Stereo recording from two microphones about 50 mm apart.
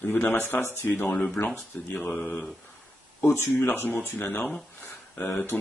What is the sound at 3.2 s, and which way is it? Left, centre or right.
Speech, left.